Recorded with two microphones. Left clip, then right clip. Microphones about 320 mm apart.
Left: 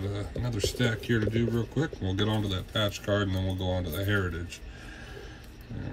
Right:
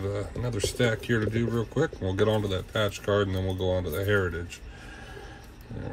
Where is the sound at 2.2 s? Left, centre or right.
Centre.